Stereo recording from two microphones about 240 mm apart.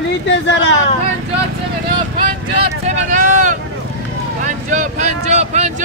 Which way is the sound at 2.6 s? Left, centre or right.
Right.